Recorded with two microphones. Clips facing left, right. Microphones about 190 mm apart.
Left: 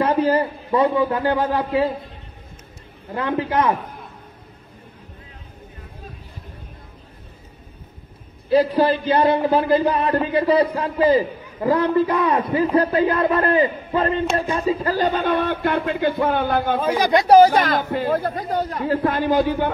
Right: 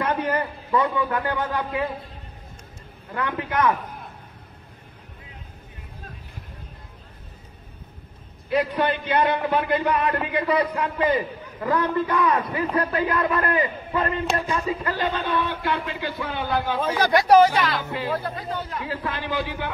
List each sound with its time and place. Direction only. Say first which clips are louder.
0.0 s a man's voice: left 6 dB; 30° left (ahead or behind)
3.1 s a man's voice: left 5 dB; 25° left (ahead or behind)
8.5 s a man's voice: left 6 dB; 30° left (ahead or behind); by 16.8 s 50° left (ahead or behind)
16.8 s speech: left 1 dB; 15° left (ahead or behind)
17.3 s speech: left 5 dB; 40° left (ahead or behind)